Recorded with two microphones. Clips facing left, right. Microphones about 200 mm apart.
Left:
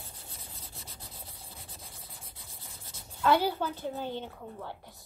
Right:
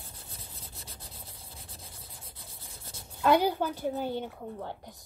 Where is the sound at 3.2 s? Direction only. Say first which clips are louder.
Right 2 dB; 15° right (ahead or behind).